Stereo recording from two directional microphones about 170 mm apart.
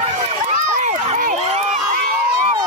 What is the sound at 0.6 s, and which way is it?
Run, 45° right (ahead or behind).